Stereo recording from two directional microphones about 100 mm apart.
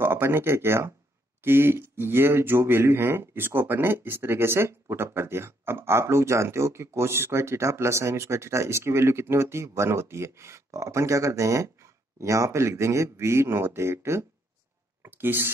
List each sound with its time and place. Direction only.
0.0 s speech: 20° right (ahead or behind)